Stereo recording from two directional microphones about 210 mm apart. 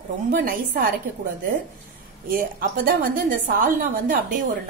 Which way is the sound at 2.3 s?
40° right (ahead or behind).